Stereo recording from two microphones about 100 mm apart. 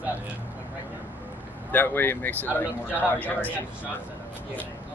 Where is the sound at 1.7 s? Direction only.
20° left (ahead or behind).